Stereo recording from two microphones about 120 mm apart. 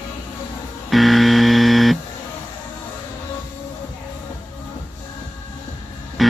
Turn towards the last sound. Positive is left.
turn(degrees=0)  # may be behind; listen again after turning